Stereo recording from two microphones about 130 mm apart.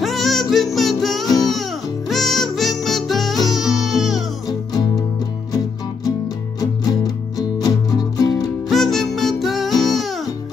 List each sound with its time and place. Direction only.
0.0 s music: centre (ahead or behind)
4.5 s music: 30° left (ahead or behind)
6.6 s music: 30° left (ahead or behind)
8.6 s music: centre (ahead or behind)